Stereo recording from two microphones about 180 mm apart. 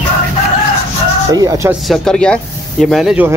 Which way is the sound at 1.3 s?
20° right (ahead or behind).